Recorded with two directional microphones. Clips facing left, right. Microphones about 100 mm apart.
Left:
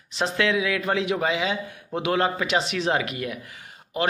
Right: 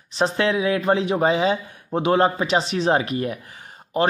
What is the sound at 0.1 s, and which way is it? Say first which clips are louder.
A man's voice: right 3 dB; 35° right (ahead or behind).